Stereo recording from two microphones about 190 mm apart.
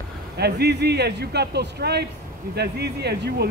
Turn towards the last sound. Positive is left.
turn(degrees=-60)  # may be behind; listen again after turning